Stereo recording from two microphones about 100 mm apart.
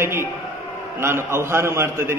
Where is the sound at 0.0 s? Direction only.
25° right (ahead or behind).